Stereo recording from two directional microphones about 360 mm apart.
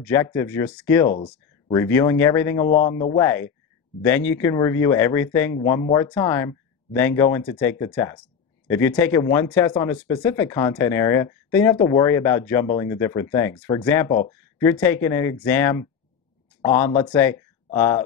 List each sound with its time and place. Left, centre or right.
0.0 s speech: centre
2.7 s speech: centre
4.0 s speech: centre
17.0 s speech: centre